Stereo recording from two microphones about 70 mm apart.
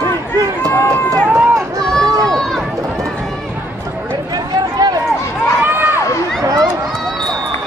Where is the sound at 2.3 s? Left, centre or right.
Centre.